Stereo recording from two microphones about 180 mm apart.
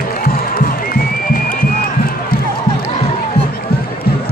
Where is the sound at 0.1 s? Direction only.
50° left (ahead or behind).